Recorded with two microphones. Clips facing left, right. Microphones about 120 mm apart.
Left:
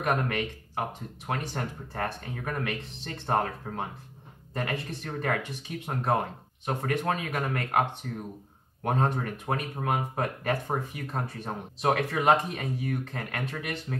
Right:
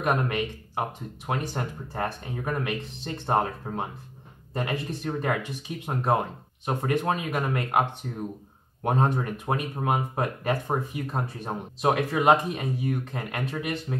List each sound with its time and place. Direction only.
0.0 s speech: 20° right (ahead or behind)
6.6 s speech: 15° right (ahead or behind)
8.8 s speech: 20° right (ahead or behind)